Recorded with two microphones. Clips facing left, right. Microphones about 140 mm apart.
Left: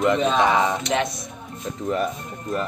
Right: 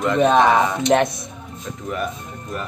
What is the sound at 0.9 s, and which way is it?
Speech, 50° right (ahead or behind).